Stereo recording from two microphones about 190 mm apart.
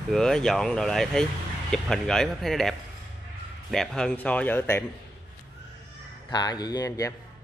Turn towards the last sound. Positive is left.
turn(degrees=15)  # may be behind; listen again after turning